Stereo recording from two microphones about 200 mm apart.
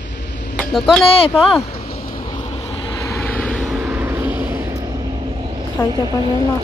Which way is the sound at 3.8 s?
10° right (ahead or behind).